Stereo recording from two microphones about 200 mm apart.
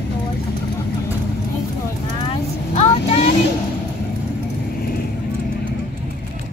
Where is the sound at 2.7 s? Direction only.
35° left (ahead or behind).